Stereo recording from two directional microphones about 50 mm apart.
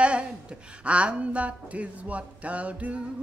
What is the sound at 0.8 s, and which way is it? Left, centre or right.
A man's voice, right.